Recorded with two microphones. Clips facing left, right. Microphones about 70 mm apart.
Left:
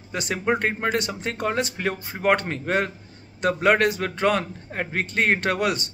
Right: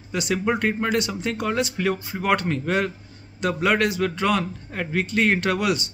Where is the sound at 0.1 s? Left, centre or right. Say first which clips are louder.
Right 1 dB; left.